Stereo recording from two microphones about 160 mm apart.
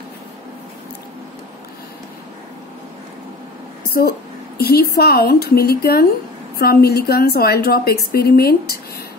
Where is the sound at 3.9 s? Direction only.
60° left (ahead or behind).